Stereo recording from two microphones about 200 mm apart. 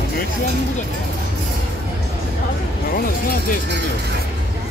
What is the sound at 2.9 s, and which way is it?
Music, 45° left (ahead or behind).